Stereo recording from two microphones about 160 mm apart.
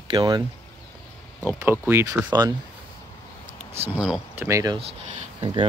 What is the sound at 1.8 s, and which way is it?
Speech, 15° right (ahead or behind).